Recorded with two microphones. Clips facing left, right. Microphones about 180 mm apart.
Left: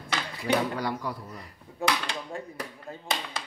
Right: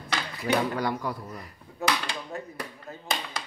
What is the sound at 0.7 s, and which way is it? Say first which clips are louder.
Speech: right 2 dB; 50° right (ahead or behind).